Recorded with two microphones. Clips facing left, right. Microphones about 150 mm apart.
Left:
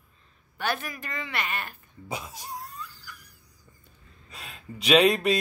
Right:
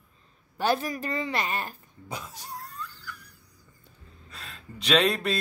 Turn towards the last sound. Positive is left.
turn(degrees=10)  # may be behind; listen again after turning